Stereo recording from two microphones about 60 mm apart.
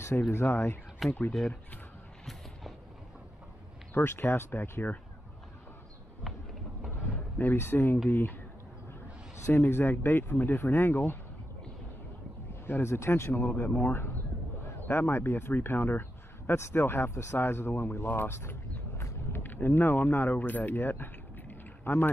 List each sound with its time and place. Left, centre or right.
0.3 s speech: left
1.0 s speech: centre
3.9 s speech: left
7.3 s speech: left
9.6 s speech: left
12.6 s speech: left
13.7 s speech: left
19.4 s speech: left